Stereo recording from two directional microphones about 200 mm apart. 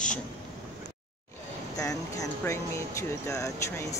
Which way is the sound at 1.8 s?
15° left (ahead or behind).